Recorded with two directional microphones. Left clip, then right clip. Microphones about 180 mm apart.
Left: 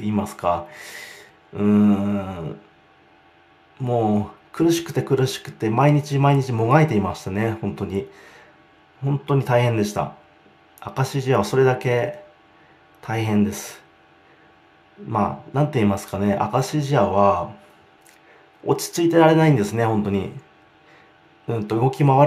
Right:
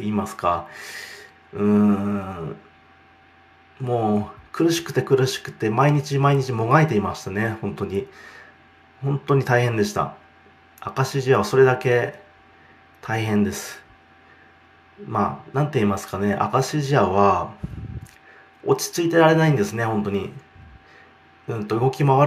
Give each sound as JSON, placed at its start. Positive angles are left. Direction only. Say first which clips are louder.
{"t": 0.0, "sound": "speech", "louder": "even", "side_deg": 15}
{"t": 3.7, "sound": "speech", "louder": "left 1 dB", "side_deg": 25}
{"t": 15.1, "sound": "speech", "louder": "left 1 dB", "side_deg": 10}
{"t": 18.7, "sound": "speech", "louder": "left 1 dB", "side_deg": 20}
{"t": 21.5, "sound": "speech", "louder": "left 1 dB", "side_deg": 15}